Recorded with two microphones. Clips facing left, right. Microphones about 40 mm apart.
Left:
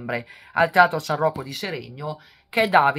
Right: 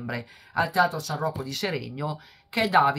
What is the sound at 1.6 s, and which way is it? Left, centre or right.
Speech, centre.